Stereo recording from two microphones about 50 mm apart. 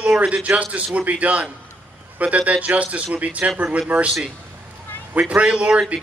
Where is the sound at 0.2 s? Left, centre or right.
Right.